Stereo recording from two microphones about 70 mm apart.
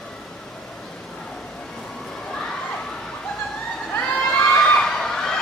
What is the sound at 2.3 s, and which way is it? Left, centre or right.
Crowd, centre.